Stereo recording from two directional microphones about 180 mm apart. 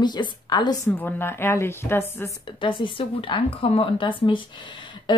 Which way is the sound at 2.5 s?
25° left (ahead or behind).